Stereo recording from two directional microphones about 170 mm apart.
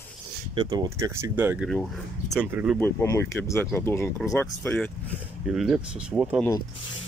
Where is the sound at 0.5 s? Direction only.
25° right (ahead or behind).